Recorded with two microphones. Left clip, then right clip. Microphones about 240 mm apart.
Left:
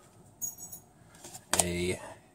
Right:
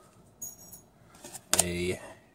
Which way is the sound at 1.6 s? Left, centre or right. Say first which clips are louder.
Even; centre.